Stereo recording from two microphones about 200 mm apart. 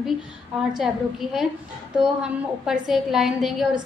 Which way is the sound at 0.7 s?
Centre (ahead or behind).